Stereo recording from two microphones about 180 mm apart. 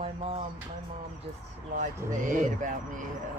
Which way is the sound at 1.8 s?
45° right (ahead or behind).